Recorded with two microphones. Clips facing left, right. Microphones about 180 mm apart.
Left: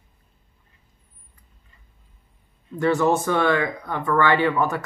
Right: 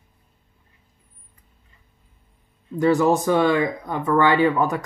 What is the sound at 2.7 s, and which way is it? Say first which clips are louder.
Speech: right 2 dB; 15° right (ahead or behind).